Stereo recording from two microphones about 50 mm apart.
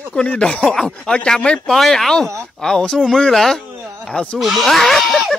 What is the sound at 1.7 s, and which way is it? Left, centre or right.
Speech, centre.